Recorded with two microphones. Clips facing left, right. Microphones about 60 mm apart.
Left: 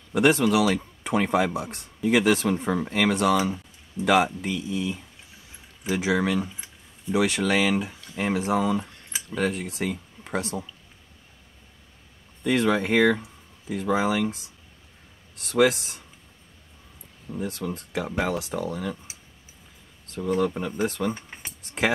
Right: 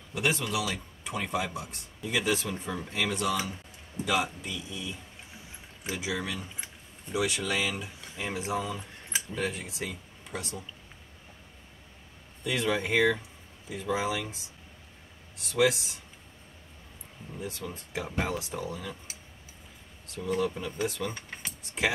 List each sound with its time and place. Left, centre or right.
0.1 s speech: left
12.4 s speech: left
17.4 s speech: left
20.1 s speech: left
21.1 s vehicle: centre